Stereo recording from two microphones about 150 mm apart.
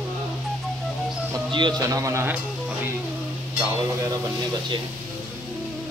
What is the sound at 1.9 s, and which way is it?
Speech, 20° right (ahead or behind).